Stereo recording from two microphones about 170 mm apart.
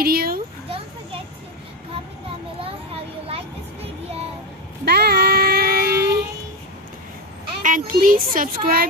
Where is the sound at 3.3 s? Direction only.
35° right (ahead or behind).